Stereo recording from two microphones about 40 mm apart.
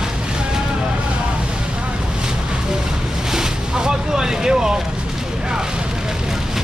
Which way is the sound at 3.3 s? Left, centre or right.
Centre.